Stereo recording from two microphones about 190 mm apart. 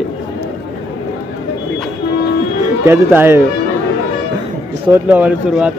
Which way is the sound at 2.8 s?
10° right (ahead or behind).